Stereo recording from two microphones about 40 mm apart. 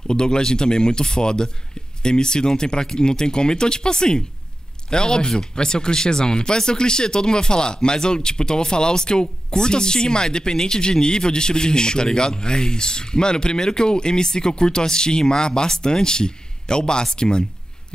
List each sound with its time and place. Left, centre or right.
0.0 s speech: left